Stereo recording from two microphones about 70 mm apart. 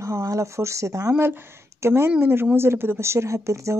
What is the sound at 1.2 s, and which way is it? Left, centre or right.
A woman's voice, right.